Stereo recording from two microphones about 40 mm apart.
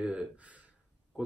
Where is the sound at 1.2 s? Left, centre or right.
Right.